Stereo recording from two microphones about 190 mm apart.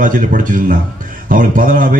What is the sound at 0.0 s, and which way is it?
A man's voice, 45° right (ahead or behind).